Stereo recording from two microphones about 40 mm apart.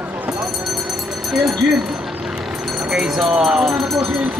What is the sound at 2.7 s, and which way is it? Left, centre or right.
Speech, centre.